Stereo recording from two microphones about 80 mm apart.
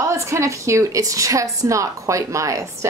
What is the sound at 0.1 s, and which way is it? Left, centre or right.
A woman's voice, right.